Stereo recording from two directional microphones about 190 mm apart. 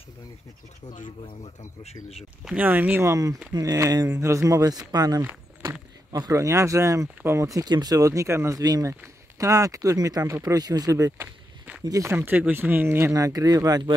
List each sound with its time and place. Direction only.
2.4 s speech: 10° right (ahead or behind)